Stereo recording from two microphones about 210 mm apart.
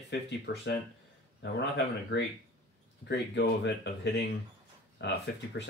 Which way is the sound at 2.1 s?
60° left (ahead or behind).